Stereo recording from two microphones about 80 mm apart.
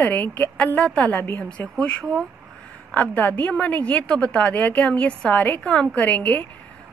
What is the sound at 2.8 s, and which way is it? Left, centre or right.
A woman's voice, centre.